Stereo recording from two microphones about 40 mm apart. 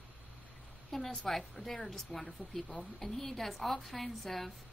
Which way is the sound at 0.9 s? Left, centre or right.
Centre.